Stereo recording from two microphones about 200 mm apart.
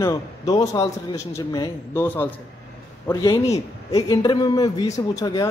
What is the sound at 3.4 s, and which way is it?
A man's voice, 15° left (ahead or behind).